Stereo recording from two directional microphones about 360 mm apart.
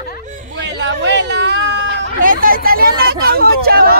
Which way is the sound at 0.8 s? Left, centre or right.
Right.